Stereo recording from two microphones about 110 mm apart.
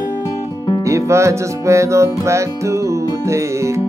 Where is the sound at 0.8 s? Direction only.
25° right (ahead or behind).